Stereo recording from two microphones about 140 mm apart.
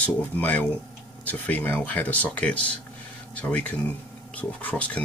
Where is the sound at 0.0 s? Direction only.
10° left (ahead or behind).